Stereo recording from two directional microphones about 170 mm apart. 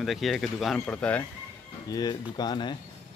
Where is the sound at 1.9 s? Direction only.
25° left (ahead or behind).